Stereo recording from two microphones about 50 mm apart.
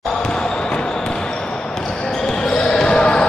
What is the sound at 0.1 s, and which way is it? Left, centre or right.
Basketball bounce, centre.